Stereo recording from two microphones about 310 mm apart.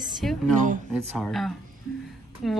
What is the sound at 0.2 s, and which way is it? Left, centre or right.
Speech, centre.